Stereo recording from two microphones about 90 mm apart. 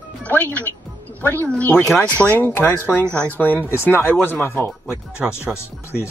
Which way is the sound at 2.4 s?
20° left (ahead or behind).